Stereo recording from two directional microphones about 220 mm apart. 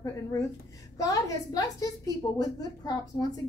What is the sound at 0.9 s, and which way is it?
A woman's voice, 15° left (ahead or behind).